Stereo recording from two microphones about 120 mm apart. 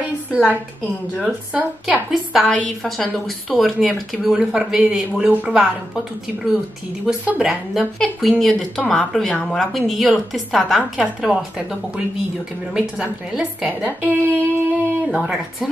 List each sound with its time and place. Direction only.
0.0 s a sound: 10° right (ahead or behind)
1.1 s a woman's voice: 5° right (ahead or behind)
12.7 s a woman's voice: 10° right (ahead or behind)